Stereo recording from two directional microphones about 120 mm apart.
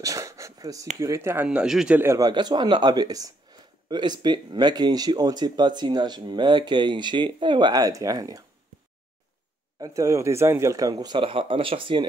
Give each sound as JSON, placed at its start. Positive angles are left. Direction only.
{"t": 0.0, "sound": "a sound", "side_deg": -25}
{"t": 0.9, "sound": "speech", "side_deg": -25}
{"t": 2.0, "sound": "speech", "side_deg": -20}
{"t": 2.2, "sound": "speech", "side_deg": -35}
{"t": 9.8, "sound": "speech", "side_deg": -30}
{"t": 11.1, "sound": "speech", "side_deg": -45}